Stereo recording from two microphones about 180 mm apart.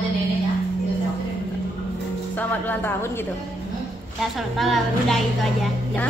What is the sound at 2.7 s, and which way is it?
Speech, 10° left (ahead or behind).